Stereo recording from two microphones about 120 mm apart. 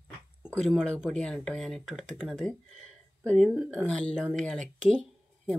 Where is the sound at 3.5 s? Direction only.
10° right (ahead or behind).